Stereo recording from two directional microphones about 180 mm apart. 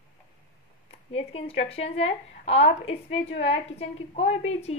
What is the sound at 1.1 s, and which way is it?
A woman's voice, 35° left (ahead or behind).